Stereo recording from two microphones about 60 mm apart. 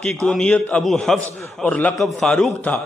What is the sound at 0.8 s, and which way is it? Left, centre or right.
Speech, centre.